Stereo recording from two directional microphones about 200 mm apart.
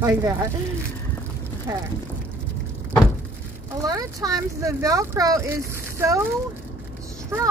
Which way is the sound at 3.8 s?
20° right (ahead or behind).